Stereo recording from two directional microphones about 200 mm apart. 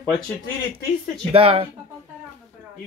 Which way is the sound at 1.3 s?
30° right (ahead or behind).